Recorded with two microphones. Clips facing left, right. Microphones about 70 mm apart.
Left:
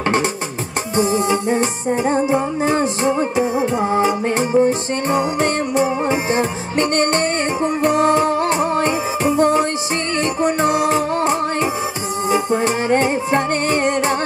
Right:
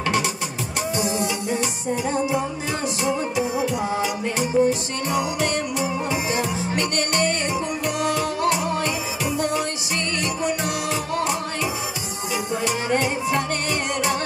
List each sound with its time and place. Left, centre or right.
0.9 s music: left